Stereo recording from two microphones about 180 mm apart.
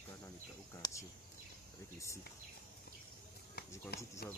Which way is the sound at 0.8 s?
15° left (ahead or behind).